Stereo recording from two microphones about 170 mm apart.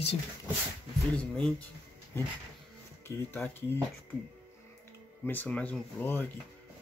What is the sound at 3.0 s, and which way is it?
Speech, 10° left (ahead or behind).